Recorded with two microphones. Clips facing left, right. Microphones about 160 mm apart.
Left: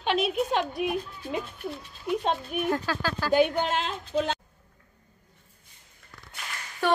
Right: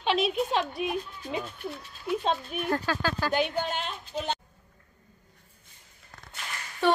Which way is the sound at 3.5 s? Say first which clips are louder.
Left 3 dB; 90° left.